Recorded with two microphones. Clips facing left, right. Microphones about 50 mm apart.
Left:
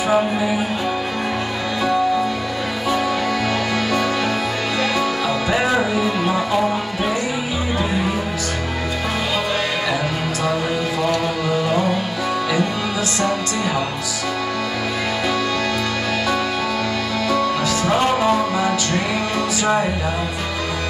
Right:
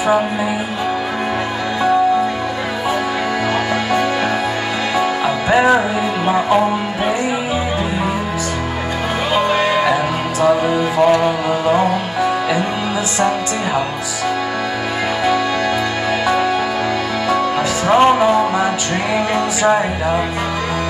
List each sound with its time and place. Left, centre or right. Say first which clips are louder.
4.9 s music: right 3 dB; right
9.3 s music: right 10 dB; right
11.0 s music: right 9 dB; right
17.3 s music: right 2 dB; right